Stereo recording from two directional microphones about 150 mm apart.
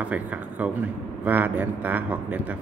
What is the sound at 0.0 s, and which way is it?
Speech, 10° right (ahead or behind).